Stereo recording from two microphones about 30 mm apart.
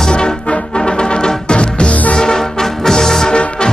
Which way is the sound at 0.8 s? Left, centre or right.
Left.